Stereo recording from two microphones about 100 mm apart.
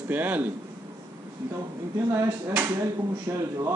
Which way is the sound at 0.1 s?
15° right (ahead or behind).